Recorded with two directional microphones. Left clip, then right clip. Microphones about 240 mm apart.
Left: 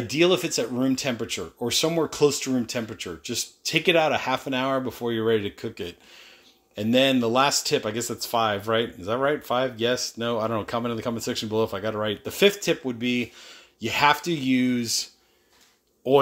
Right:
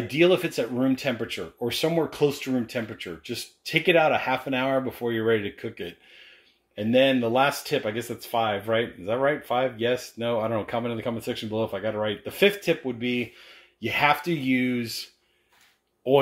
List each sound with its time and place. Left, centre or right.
0.1 s speech: centre